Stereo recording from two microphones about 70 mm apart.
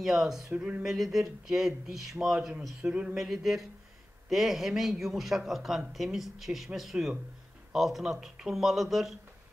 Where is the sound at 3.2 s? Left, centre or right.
Centre.